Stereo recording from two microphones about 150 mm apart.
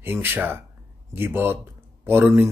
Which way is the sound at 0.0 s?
15° right (ahead or behind).